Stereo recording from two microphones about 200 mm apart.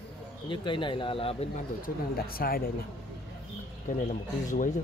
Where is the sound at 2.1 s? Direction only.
50° left (ahead or behind).